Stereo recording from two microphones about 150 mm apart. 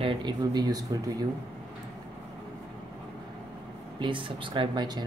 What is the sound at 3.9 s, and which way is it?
Speech, 35° right (ahead or behind).